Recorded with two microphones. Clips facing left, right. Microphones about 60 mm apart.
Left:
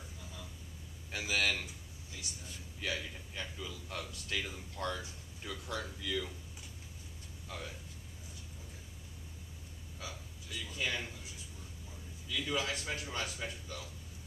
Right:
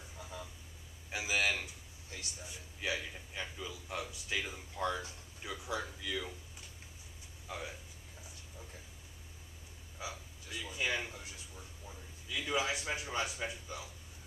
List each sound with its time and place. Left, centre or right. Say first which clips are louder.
0.2 s vehicle: right 6 dB; right
1.1 s a man's voice: even; centre
7.4 s speech: right 2 dB; centre
9.9 s speech: right 3 dB; centre
12.3 s a man's voice: right 1 dB; centre